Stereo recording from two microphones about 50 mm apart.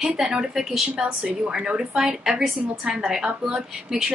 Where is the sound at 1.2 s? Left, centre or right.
Centre.